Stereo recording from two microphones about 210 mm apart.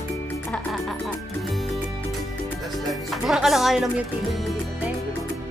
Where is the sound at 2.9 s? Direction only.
Centre (ahead or behind).